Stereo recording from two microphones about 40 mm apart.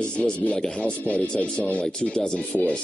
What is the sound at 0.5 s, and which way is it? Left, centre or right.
Speech, centre.